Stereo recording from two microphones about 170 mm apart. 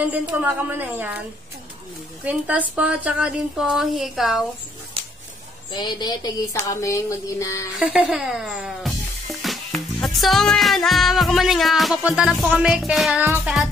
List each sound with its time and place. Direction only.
0.0 s a woman's voice: 10° right (ahead or behind)
2.2 s speech: 10° right (ahead or behind)
5.0 s a sound: 35° right (ahead or behind)
5.7 s speech: 25° left (ahead or behind)
6.7 s music: 20° left (ahead or behind)
7.8 s speech: 5° right (ahead or behind)